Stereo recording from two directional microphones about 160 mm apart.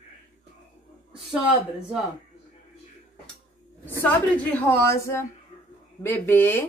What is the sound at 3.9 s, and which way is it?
Speech, 10° left (ahead or behind).